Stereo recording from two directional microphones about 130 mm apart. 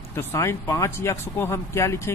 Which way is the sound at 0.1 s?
20° left (ahead or behind).